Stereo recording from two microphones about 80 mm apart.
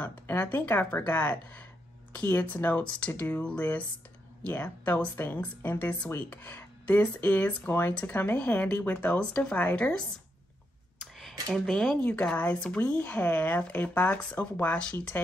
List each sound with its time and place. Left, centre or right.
0.0 s speech: left
11.0 s a sound: centre
11.5 s speech: centre
12.0 s speech: centre